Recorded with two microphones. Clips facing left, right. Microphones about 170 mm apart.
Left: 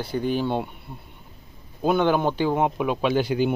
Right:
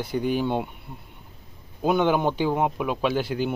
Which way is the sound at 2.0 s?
15° right (ahead or behind).